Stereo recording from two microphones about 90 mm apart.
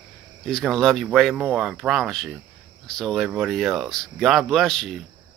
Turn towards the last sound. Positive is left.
turn(degrees=5)  # may be behind; listen again after turning